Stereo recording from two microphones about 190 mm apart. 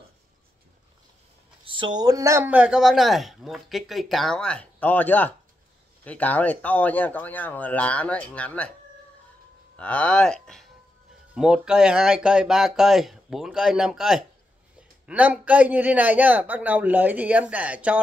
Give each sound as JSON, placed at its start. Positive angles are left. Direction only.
{"t": 1.6, "sound": "speech", "side_deg": -25}
{"t": 9.8, "sound": "a man's voice", "side_deg": 5}